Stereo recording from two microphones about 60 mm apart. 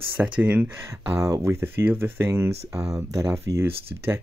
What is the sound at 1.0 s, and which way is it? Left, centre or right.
Speech, right.